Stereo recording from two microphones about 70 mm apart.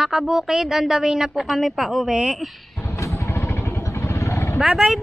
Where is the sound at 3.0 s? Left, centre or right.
Left.